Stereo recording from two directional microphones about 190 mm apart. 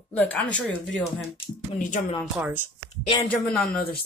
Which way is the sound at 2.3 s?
10° right (ahead or behind).